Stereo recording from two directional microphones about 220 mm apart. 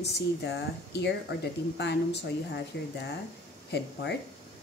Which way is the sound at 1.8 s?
50° left (ahead or behind).